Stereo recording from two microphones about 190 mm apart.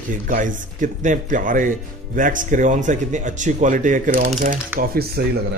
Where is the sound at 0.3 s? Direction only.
45° right (ahead or behind).